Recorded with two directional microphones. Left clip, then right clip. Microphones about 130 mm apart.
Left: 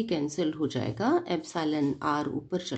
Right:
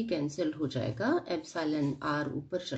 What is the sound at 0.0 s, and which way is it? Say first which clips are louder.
Speech: left 3 dB; 45° left (ahead or behind).